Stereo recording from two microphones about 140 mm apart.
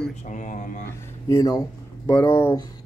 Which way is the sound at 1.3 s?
25° left (ahead or behind).